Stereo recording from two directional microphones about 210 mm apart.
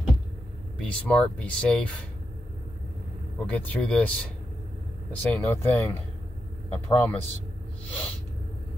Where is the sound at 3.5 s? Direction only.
5° left (ahead or behind).